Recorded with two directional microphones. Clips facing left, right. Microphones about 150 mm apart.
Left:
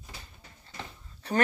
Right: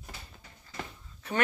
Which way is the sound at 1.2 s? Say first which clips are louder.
Left 4 dB; 35° left (ahead or behind).